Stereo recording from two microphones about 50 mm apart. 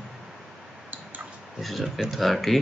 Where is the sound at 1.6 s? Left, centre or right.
Centre.